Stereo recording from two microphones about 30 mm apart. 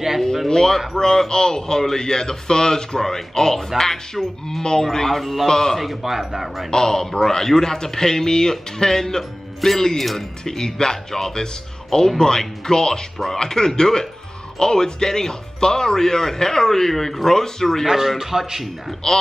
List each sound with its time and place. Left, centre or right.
0.5 s speech: centre
5.5 s speech: centre
5.8 s a man's voice: centre
6.7 s speech: centre
17.8 s a man's voice: centre